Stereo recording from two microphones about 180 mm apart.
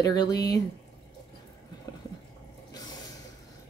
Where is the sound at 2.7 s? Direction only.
20° left (ahead or behind).